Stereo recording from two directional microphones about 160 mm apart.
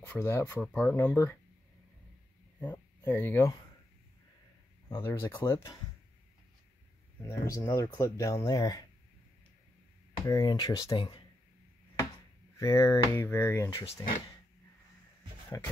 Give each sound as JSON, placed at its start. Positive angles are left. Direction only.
{"t": 0.0, "sound": "speech", "side_deg": 15}
{"t": 2.6, "sound": "speech", "side_deg": 10}
{"t": 4.8, "sound": "speech", "side_deg": 20}
{"t": 7.2, "sound": "speech", "side_deg": 15}
{"t": 10.2, "sound": "speech", "side_deg": 25}
{"t": 12.5, "sound": "speech", "side_deg": 20}